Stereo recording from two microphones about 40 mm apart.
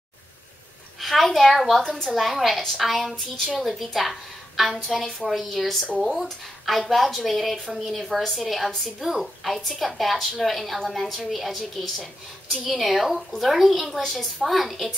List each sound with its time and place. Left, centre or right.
1.0 s a child's voice: centre
1.8 s a woman's voice: centre
2.1 s a woman's voice: centre